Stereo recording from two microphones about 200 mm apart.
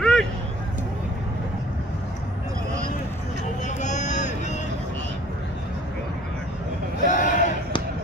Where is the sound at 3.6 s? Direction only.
35° left (ahead or behind).